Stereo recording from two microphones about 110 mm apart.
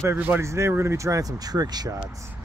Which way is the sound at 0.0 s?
20° right (ahead or behind).